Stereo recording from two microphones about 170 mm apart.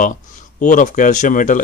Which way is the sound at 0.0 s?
50° left (ahead or behind).